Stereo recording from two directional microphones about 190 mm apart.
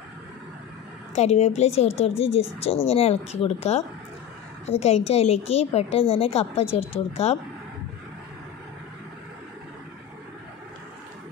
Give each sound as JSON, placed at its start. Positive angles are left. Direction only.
{"t": 1.1, "sound": "a woman's voice", "side_deg": 35}